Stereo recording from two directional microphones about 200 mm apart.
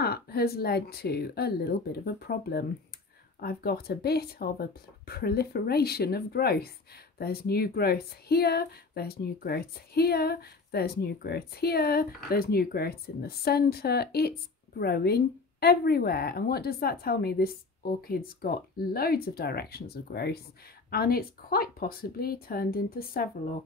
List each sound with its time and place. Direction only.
0.0 s speech: 50° left (ahead or behind)